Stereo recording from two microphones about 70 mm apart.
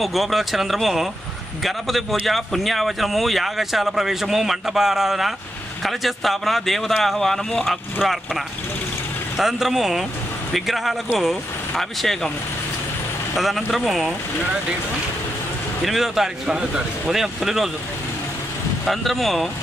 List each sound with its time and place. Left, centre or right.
0.0 s speech: centre
13.4 s speech: centre
15.8 s speech: centre
18.9 s speech: centre